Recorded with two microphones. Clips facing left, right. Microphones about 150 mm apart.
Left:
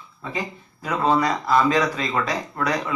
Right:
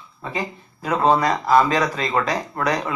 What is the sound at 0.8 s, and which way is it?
Speech, 45° right (ahead or behind).